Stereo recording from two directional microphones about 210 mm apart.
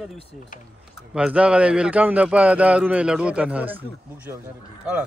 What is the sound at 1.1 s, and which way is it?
A man's voice, 5° right (ahead or behind).